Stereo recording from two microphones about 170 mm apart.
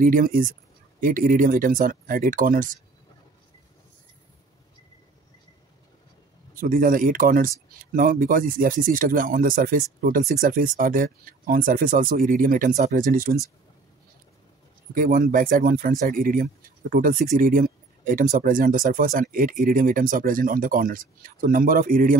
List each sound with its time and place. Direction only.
0.0 s speech: 55° right (ahead or behind)
6.5 s speech: 55° right (ahead or behind)
15.0 s speech: 55° right (ahead or behind)